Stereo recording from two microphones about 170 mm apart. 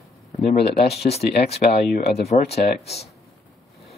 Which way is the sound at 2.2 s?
40° left (ahead or behind).